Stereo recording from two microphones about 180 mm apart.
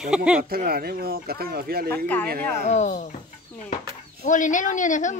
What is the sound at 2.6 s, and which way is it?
Speech, 40° left (ahead or behind).